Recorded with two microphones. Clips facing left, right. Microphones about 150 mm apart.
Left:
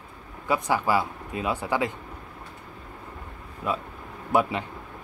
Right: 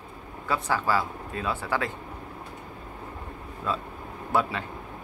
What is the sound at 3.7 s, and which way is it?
Speech, 15° left (ahead or behind).